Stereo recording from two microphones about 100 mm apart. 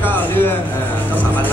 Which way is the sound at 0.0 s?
20° left (ahead or behind).